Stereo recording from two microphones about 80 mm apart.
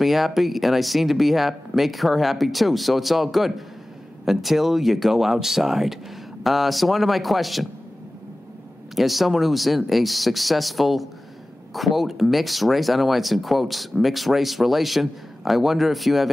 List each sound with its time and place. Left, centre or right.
0.0 s speech: centre
8.9 s speech: centre